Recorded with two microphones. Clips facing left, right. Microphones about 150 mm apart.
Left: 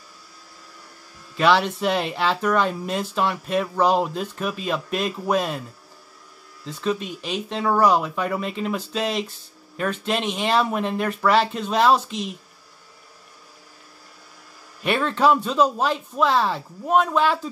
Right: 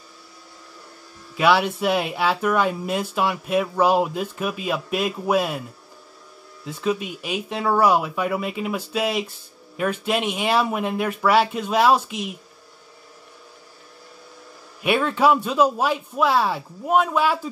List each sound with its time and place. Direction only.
1.3 s speech: 10° right (ahead or behind)
6.6 s speech: 10° right (ahead or behind)
14.8 s speech: 10° right (ahead or behind)